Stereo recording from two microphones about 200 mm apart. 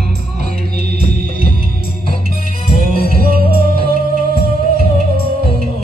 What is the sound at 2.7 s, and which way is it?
Music, 45° right (ahead or behind).